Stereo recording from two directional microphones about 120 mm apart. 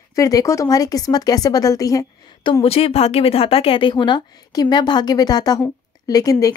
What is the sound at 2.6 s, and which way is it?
Speech, 55° left (ahead or behind).